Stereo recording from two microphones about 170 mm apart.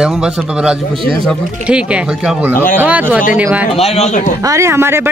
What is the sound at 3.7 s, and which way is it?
Speech, 35° left (ahead or behind).